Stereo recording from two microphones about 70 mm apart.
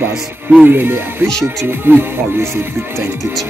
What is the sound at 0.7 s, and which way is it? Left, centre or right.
Speech, right.